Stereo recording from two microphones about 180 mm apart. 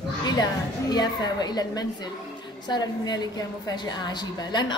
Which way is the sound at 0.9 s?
25° left (ahead or behind).